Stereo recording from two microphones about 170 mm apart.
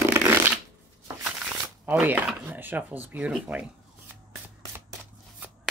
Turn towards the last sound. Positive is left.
turn(degrees=-10)  # may be behind; listen again after turning